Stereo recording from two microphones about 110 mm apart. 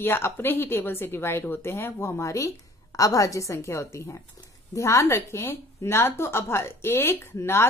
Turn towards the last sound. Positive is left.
turn(degrees=25)  # may be behind; listen again after turning